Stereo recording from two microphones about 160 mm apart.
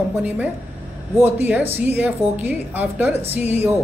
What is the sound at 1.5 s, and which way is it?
A woman's voice, 10° right (ahead or behind).